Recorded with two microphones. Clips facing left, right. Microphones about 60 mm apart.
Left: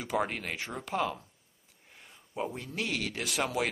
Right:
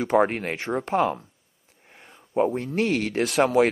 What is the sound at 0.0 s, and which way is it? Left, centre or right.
A man's voice, right.